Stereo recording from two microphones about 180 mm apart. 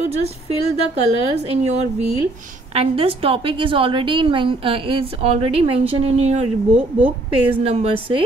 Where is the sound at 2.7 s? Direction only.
35° right (ahead or behind).